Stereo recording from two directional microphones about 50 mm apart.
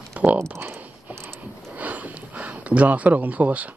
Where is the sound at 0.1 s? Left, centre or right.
Right.